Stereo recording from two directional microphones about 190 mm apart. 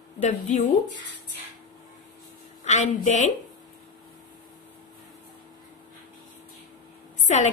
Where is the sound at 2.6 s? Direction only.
40° left (ahead or behind).